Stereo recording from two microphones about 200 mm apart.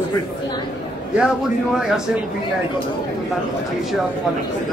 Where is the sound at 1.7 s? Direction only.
Centre (ahead or behind).